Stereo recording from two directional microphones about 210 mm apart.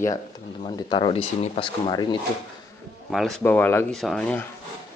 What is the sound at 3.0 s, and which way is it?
Speech, centre (ahead or behind).